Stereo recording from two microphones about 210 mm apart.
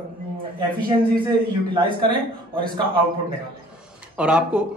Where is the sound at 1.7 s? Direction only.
25° right (ahead or behind).